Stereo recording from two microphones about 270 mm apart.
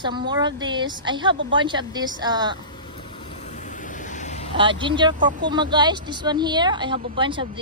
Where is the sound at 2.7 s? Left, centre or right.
Centre.